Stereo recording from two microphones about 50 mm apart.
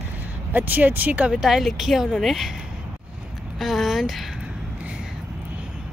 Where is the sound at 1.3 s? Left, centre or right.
Centre.